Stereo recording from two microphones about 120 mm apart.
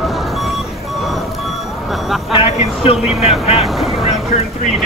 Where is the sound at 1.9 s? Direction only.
Centre (ahead or behind).